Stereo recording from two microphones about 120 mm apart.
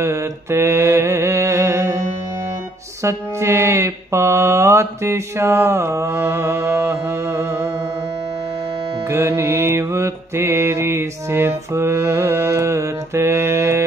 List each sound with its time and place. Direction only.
0.0 s mantra: 25° right (ahead or behind)
9.0 s music: 20° right (ahead or behind)